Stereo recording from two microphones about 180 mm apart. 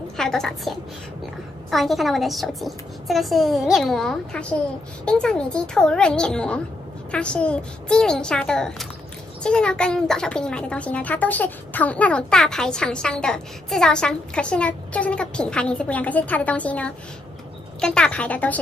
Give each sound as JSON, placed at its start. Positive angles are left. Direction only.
{"t": 0.2, "sound": "a child's voice", "side_deg": 5}